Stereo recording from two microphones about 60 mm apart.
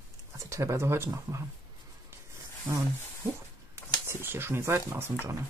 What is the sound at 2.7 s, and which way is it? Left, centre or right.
Speech, right.